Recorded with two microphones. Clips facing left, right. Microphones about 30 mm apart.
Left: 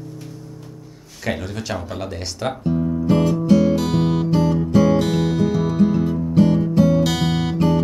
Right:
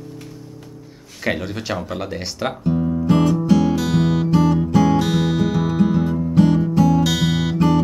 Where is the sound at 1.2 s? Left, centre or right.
Centre.